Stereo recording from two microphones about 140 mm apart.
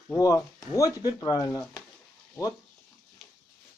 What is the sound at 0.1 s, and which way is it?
A man's voice, 25° left (ahead or behind).